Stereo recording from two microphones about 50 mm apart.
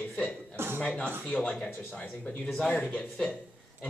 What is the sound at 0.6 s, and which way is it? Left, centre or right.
Speech, right.